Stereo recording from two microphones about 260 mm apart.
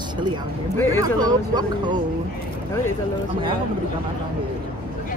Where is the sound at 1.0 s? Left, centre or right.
Centre.